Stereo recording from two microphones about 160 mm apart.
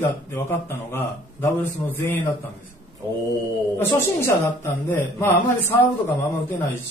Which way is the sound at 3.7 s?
15° left (ahead or behind).